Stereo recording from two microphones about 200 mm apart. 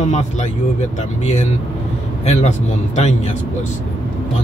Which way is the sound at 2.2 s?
35° left (ahead or behind).